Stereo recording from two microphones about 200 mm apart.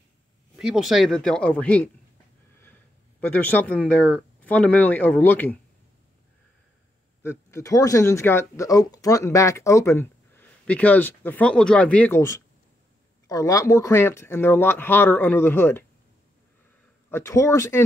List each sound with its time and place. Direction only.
0.6 s speech: centre (ahead or behind)
7.2 s speech: 15° left (ahead or behind)
17.1 s speech: 15° left (ahead or behind)